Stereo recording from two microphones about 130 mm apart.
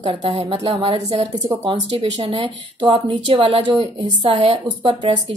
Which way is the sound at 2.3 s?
40° right (ahead or behind).